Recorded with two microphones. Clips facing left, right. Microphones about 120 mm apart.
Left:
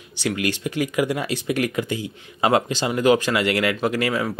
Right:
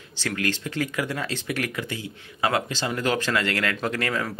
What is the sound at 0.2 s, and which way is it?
Speech, 15° left (ahead or behind).